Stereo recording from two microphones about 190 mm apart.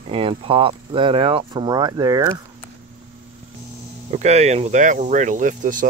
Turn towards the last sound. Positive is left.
turn(degrees=-45)  # may be behind; listen again after turning